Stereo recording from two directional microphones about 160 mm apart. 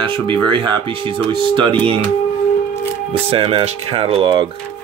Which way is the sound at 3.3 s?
30° right (ahead or behind).